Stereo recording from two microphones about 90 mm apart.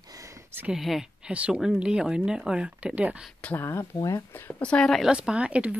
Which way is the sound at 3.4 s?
15° left (ahead or behind).